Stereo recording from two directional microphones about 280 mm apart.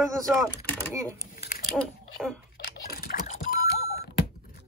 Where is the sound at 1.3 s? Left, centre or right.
Left.